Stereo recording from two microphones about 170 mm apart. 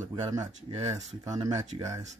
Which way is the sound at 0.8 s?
40° right (ahead or behind).